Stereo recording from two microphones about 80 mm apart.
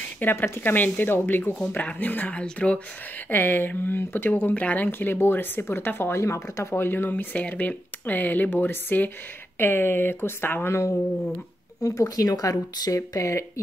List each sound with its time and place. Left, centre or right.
0.2 s speech: left